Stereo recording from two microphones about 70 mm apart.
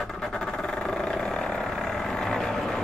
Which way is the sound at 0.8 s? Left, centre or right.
Centre.